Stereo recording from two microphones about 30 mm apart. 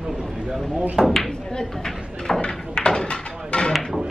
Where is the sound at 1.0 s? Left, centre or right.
Right.